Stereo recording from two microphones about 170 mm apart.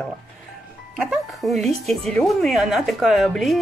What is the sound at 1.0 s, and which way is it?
Speech, centre (ahead or behind).